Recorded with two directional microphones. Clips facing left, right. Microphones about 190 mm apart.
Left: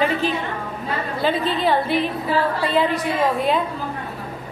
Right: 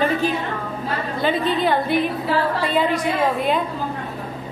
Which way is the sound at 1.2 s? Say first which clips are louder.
Right 1 dB; centre (ahead or behind).